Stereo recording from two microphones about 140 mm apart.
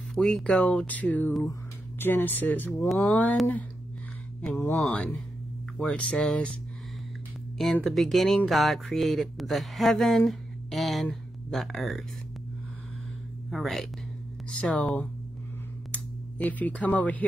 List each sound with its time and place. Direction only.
0.1 s speech: 5° left (ahead or behind)
4.6 s speech: 15° left (ahead or behind)
7.5 s speech: centre (ahead or behind)
13.5 s speech: centre (ahead or behind)